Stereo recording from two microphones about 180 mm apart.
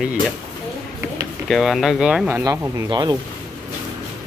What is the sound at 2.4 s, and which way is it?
Speech, 20° right (ahead or behind).